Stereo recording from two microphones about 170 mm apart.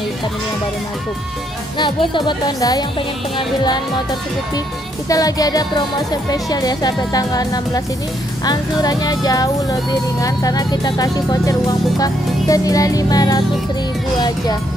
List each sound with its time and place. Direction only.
1.8 s speech: 30° left (ahead or behind)
5.1 s speech: 20° left (ahead or behind)